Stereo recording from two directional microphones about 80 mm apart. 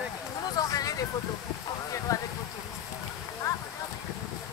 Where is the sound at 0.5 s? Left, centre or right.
Left.